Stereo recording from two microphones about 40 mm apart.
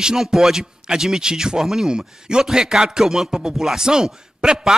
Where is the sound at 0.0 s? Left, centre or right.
Centre.